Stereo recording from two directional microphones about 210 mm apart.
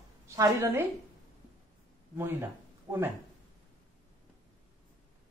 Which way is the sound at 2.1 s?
10° right (ahead or behind).